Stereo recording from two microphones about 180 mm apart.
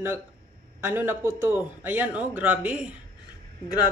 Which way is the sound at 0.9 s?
10° right (ahead or behind).